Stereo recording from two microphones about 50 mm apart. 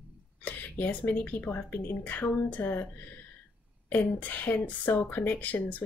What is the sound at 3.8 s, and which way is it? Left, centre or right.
Speech, left.